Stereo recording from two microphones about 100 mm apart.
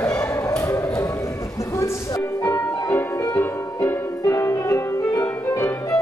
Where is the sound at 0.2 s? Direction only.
30° left (ahead or behind).